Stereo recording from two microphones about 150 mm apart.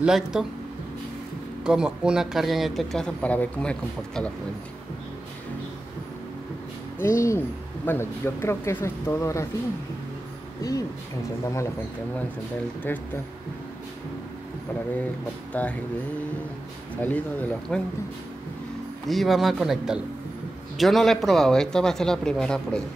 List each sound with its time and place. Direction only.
0.0 s speech: 5° right (ahead or behind)
1.6 s speech: 5° right (ahead or behind)
7.0 s speech: 20° left (ahead or behind)
10.6 s speech: 25° left (ahead or behind)
12.8 s speech: 10° left (ahead or behind)
15.5 s speech: 10° left (ahead or behind)
16.9 s speech: 10° left (ahead or behind)
19.0 s speech: centre (ahead or behind)